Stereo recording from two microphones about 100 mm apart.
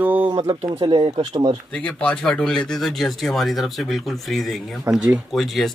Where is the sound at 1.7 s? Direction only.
10° left (ahead or behind).